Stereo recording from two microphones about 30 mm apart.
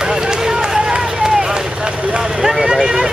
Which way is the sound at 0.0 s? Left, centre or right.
Right.